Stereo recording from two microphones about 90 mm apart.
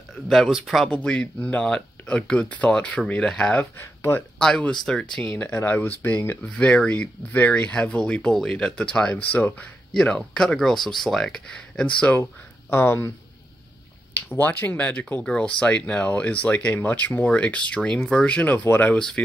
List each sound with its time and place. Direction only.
0.3 s speech: centre (ahead or behind)
0.8 s speech: 10° left (ahead or behind)
3.7 s speech: 25° left (ahead or behind)
4.4 s speech: 10° left (ahead or behind)
9.1 s speech: 20° left (ahead or behind)
9.9 s speech: 10° left (ahead or behind)
12.2 s speech: 25° left (ahead or behind)
14.3 s speech: 25° left (ahead or behind)